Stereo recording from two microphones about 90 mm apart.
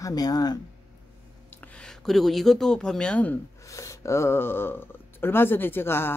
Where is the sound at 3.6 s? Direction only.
35° left (ahead or behind).